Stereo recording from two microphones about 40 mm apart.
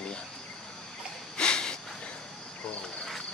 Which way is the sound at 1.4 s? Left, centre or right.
Left.